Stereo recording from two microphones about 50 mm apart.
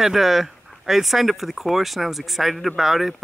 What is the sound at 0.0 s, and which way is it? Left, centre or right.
Speech, centre.